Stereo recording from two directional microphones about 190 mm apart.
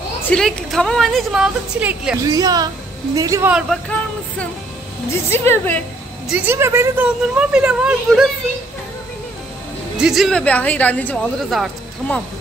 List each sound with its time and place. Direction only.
0.3 s a woman's voice: 5° left (ahead or behind)
2.2 s a woman's voice: 20° right (ahead or behind)
3.5 s a woman's voice: centre (ahead or behind)
6.2 s speech: 10° right (ahead or behind)
9.9 s speech: 5° right (ahead or behind)